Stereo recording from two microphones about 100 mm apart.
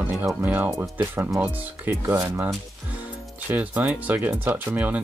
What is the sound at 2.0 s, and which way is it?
Speech, 35° right (ahead or behind).